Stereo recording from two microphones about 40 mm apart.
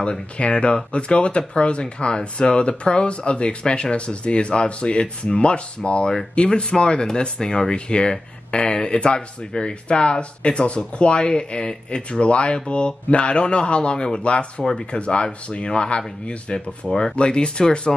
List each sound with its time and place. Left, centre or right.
0.4 s speech: left
17.1 s speech: left